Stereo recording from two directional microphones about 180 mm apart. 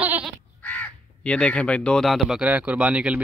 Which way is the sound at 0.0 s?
10° right (ahead or behind).